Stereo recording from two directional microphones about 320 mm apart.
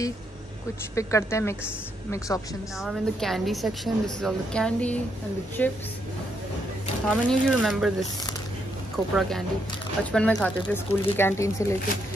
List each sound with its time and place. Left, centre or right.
0.9 s a woman's voice: centre
7.1 s a woman's voice: centre
8.9 s a woman's voice: centre